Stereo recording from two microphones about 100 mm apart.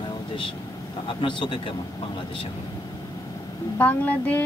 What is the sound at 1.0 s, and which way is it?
Speech, 55° left (ahead or behind).